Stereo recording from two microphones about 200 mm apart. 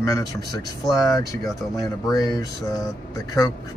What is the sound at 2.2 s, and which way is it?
Speech, 20° left (ahead or behind).